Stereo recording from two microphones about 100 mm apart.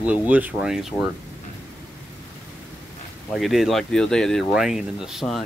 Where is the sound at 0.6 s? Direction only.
5° right (ahead or behind).